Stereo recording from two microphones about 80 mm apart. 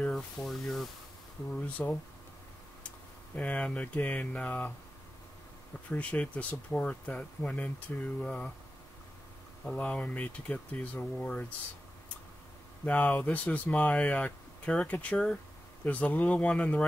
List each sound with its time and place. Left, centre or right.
0.1 s speech: centre
1.5 s speech: centre
3.3 s speech: centre
5.9 s speech: centre
9.7 s speech: centre
12.8 s speech: centre